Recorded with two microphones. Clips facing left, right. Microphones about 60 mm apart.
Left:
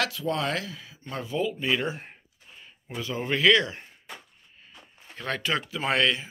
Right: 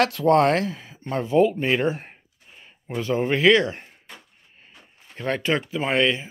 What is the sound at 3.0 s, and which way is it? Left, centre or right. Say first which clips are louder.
Speech: right 8 dB; right.